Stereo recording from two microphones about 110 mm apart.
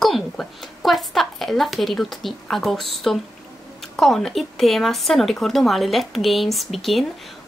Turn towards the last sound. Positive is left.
turn(degrees=0)  # may be behind; listen again after turning